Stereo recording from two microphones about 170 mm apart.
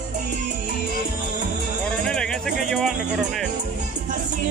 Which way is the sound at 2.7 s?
Centre (ahead or behind).